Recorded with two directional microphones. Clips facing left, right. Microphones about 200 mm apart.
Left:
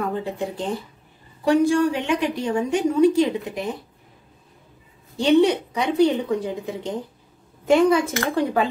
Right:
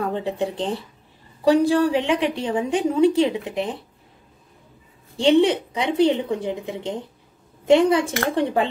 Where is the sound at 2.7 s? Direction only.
30° right (ahead or behind).